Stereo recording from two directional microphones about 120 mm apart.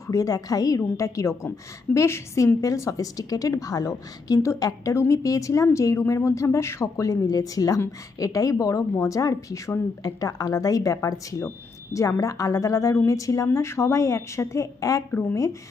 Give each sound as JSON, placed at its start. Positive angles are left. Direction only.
{"t": 0.0, "sound": "a woman's voice", "side_deg": 30}
{"t": 15.0, "sound": "speech", "side_deg": 15}